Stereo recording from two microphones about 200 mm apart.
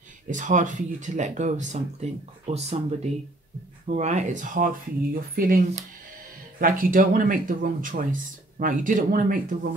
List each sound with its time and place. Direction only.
0.3 s speech: 40° right (ahead or behind)
3.8 s speech: 35° right (ahead or behind)